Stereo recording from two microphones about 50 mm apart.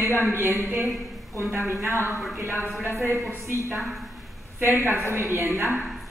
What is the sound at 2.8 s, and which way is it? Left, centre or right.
Speech, right.